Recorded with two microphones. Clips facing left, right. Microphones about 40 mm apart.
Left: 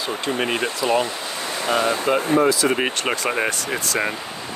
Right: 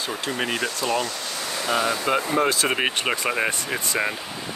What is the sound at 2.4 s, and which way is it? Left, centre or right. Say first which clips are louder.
Speech: left 4 dB; right.